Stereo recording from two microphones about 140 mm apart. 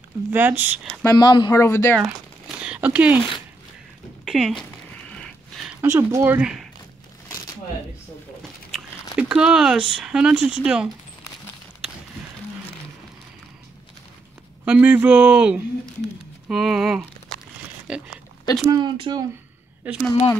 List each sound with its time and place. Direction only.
0.3 s speech: 15° right (ahead or behind)
1.0 s speech: 30° left (ahead or behind)
1.5 s speech: 20° left (ahead or behind)
2.0 s speech: 5° right (ahead or behind)
4.2 s speech: centre (ahead or behind)
5.8 s speech: 20° right (ahead or behind)
8.7 s speech: 5° right (ahead or behind)
14.6 s speech: 10° right (ahead or behind)
17.8 s pig: 5° right (ahead or behind)
18.7 s speech: 35° right (ahead or behind)
19.9 s speech: 15° right (ahead or behind)